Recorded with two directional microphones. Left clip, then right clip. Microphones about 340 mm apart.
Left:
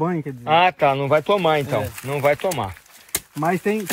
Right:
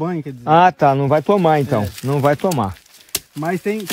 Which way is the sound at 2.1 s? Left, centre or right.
Right.